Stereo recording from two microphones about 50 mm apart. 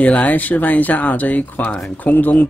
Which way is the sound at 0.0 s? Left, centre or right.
Left.